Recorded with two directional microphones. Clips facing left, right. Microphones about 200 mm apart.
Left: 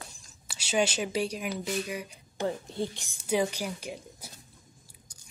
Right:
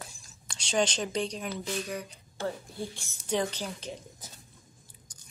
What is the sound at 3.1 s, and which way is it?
Speech, 10° left (ahead or behind).